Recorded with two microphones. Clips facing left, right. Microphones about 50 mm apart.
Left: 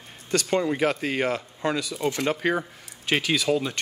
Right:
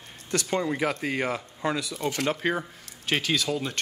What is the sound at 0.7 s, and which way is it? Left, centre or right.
Speech, centre.